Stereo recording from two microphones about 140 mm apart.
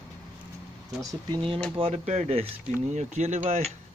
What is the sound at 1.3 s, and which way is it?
Speech, 40° right (ahead or behind).